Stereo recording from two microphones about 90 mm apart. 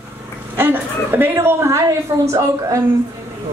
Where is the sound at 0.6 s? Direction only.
25° right (ahead or behind).